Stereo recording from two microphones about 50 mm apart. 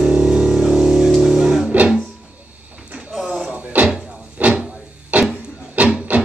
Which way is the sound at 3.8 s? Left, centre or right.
Right.